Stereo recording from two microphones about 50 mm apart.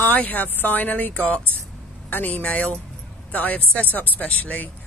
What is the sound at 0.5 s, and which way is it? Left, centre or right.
Speech, left.